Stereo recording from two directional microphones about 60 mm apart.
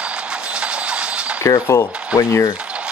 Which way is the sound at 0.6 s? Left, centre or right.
Centre.